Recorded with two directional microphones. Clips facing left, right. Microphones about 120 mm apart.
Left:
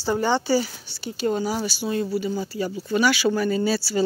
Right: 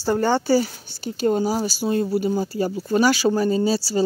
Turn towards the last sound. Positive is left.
turn(degrees=-35)  # may be behind; listen again after turning